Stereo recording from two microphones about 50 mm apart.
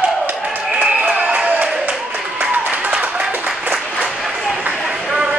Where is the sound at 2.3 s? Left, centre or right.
Right.